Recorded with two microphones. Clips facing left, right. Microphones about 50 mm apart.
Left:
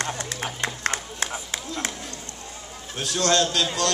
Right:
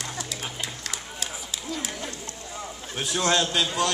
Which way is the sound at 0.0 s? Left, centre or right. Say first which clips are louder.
Left 5 dB; left.